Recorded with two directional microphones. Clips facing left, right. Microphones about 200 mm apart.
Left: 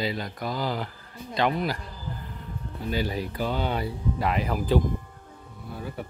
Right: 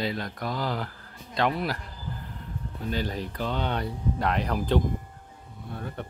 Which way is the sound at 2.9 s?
10° left (ahead or behind).